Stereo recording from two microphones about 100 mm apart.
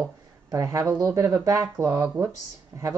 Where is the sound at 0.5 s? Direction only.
30° right (ahead or behind).